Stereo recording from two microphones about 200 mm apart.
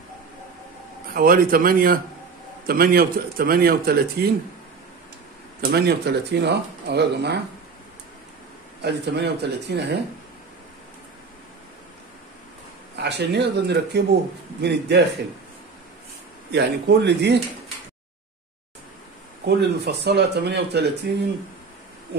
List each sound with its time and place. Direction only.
1.1 s a man's voice: 45° right (ahead or behind)
5.6 s speech: 55° right (ahead or behind)
8.8 s speech: 55° right (ahead or behind)
12.9 s speech: 55° right (ahead or behind)
16.5 s speech: 60° right (ahead or behind)
19.4 s speech: 55° right (ahead or behind)